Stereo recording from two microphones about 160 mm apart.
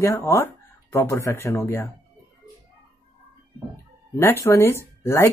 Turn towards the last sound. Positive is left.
turn(degrees=15)  # may be behind; listen again after turning